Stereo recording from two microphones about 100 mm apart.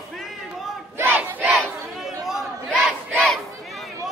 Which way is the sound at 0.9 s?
20° right (ahead or behind).